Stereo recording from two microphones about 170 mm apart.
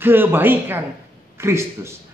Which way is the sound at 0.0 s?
10° right (ahead or behind).